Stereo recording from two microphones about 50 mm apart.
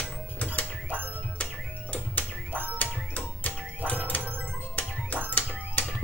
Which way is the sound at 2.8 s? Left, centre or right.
Left.